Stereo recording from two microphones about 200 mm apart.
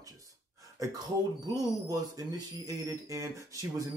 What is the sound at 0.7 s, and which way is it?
Speech, 15° right (ahead or behind).